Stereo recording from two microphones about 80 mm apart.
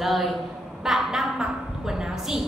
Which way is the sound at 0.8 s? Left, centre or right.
Centre.